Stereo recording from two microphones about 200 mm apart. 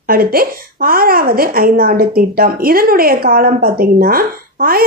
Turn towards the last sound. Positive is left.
turn(degrees=-50)  # may be behind; listen again after turning